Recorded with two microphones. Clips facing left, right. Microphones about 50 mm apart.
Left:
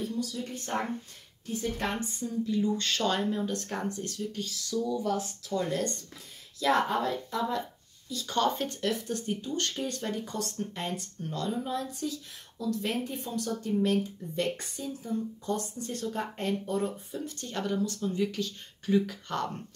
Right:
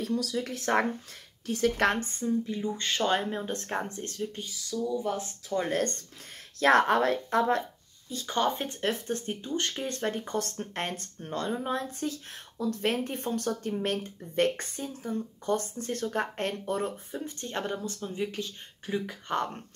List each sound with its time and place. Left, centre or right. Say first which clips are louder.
0.0 s speech: right 3 dB; right
1.4 s a woman's voice: right 7 dB; right
2.0 s speech: right 4 dB; right
2.4 s speech: left 3 dB; right
4.5 s speech: left 3 dB; centre
5.0 s speech: left 1 dB; right
6.6 s speech: right 4 dB; right
8.1 s speech: even; right
9.0 s speech: even; right
11.1 s speech: right 2 dB; right